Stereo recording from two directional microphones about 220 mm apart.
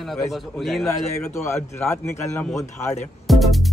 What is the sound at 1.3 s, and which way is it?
Speech, 15° left (ahead or behind).